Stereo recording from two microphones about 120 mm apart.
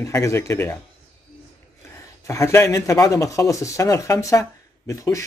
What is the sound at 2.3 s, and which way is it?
Speech, 20° left (ahead or behind).